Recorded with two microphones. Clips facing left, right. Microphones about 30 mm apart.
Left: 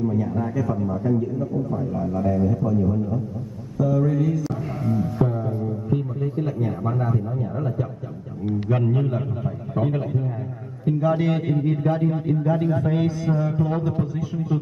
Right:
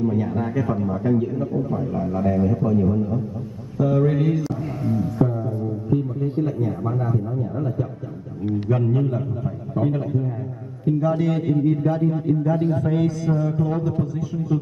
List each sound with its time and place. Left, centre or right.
0.0 s a man's voice: right
1.8 s a man's voice: centre; by 4.4 s right
4.9 s music: centre
5.9 s a sound: centre
6.4 s a man's voice: centre
8.7 s a man's voice: centre